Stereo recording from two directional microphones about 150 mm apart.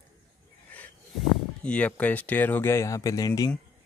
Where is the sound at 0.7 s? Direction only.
10° left (ahead or behind).